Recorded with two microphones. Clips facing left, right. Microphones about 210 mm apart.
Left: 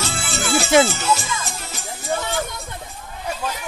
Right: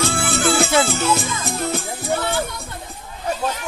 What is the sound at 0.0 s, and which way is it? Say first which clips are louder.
Music: right 6 dB; 55° right (ahead or behind).